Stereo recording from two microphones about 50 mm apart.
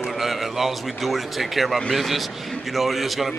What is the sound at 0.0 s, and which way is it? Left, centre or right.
A man's voice, centre.